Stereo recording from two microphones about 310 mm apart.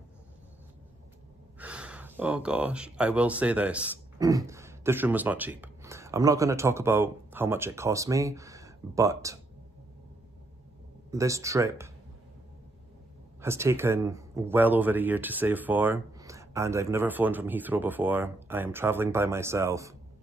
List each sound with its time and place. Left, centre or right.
1.6 s speech: centre
11.1 s speech: centre
13.4 s speech: centre